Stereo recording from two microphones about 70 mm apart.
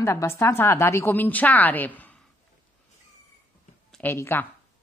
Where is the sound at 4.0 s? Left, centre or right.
Left.